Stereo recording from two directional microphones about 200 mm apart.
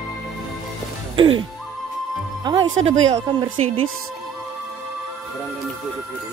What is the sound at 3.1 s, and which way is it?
Speech, 20° right (ahead or behind).